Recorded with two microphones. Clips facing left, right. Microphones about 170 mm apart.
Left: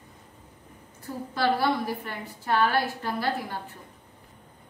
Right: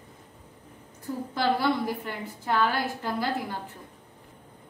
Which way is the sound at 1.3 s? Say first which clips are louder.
Left 1 dB; 20° right (ahead or behind).